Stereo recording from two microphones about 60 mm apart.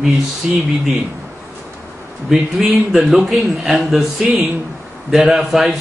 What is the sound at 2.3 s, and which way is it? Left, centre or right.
A man's voice, centre.